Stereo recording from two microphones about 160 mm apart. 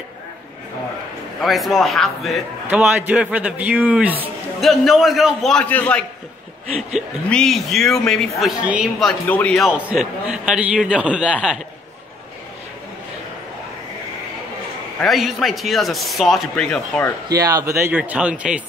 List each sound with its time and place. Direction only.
1.4 s a man's voice: centre (ahead or behind)
9.3 s a man's voice: 5° left (ahead or behind)
15.0 s a man's voice: centre (ahead or behind)
17.3 s a man's voice: 25° right (ahead or behind)